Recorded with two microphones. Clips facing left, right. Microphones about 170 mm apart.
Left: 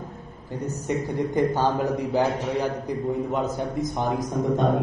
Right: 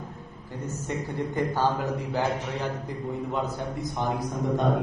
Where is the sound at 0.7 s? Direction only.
15° left (ahead or behind).